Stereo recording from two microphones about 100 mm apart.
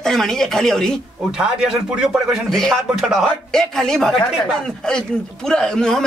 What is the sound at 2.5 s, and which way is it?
Speech, 5° left (ahead or behind).